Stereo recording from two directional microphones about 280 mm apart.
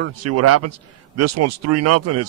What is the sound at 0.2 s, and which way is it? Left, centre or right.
A man's voice, right.